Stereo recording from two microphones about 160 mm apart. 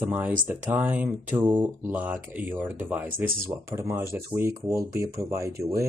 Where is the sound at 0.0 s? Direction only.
10° right (ahead or behind).